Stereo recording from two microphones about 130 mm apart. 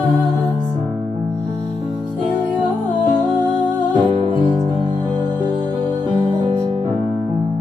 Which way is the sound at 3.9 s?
40° right (ahead or behind).